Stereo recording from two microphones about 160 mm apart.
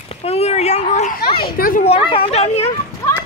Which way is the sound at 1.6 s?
60° left (ahead or behind).